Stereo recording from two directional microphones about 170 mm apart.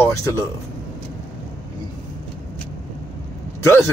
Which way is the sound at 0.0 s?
15° left (ahead or behind).